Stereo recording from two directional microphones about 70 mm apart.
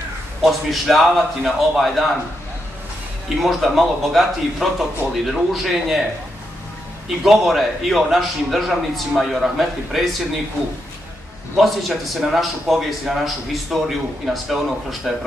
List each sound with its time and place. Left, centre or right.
0.4 s a man's voice: centre
3.3 s a man's voice: centre
7.2 s a man's voice: centre
11.5 s a man's voice: centre